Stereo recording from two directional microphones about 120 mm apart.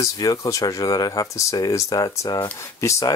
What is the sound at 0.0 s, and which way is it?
Speech, 30° left (ahead or behind).